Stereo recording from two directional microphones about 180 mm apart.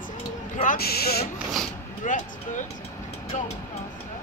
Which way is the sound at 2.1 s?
45° left (ahead or behind).